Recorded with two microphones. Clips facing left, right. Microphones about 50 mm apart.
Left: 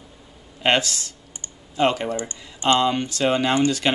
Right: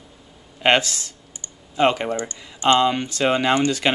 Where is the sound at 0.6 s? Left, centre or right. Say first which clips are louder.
Right 2 dB; centre.